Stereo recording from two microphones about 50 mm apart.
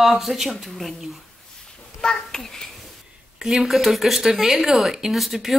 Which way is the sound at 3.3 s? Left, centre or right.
Centre.